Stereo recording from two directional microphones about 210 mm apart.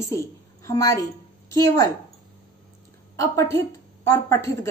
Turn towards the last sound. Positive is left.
turn(degrees=15)  # may be behind; listen again after turning